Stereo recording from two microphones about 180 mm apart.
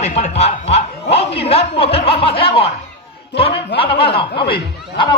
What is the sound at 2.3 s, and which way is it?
Snicker, 30° left (ahead or behind).